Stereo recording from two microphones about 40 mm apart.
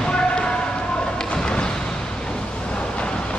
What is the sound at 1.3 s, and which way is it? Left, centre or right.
Thump, left.